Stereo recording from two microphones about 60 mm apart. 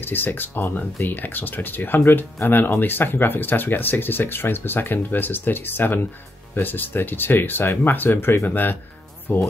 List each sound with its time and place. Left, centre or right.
0.0 s speech: left